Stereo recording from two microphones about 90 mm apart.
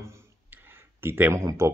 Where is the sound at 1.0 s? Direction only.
25° right (ahead or behind).